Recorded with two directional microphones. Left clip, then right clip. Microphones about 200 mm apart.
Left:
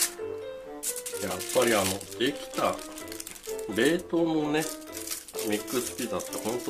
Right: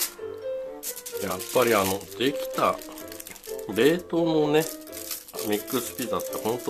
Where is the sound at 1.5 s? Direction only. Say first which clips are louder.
Right 3 dB; 40° right (ahead or behind).